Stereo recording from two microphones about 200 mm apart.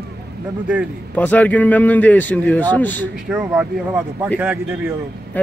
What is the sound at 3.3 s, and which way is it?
Speech, 5° right (ahead or behind).